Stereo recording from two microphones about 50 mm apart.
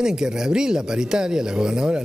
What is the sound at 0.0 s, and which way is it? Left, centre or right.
Speech, centre.